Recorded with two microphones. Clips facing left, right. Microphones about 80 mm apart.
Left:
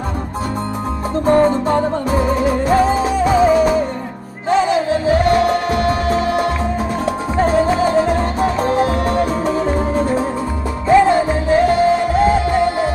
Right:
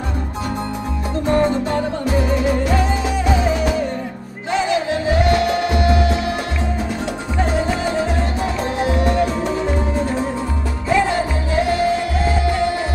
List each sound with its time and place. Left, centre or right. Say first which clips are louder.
1.2 s music: left 4 dB; left